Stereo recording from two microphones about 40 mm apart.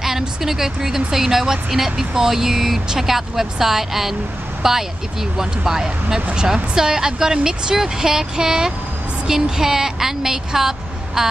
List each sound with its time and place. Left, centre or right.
0.4 s speech: centre